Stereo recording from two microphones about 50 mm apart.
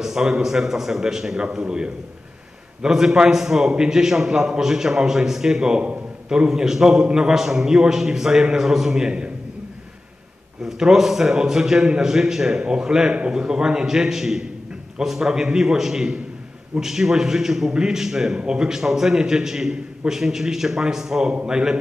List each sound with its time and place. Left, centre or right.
0.0 s a man's voice: centre
10.6 s a man's voice: centre